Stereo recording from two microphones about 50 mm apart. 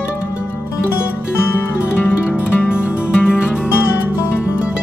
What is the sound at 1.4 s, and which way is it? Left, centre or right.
Music, left.